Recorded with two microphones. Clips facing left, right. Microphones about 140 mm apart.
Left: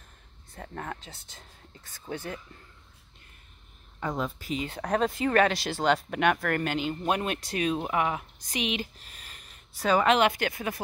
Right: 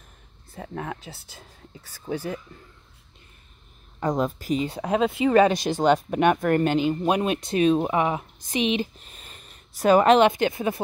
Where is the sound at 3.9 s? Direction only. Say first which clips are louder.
Right 7 dB; 40° right (ahead or behind).